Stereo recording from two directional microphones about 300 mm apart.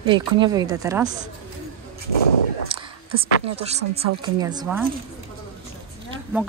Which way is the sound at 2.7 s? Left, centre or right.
Centre.